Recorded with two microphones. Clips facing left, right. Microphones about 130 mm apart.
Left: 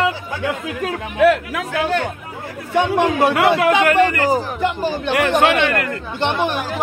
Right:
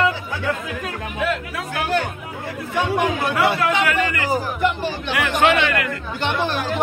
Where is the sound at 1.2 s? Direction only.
75° left (ahead or behind).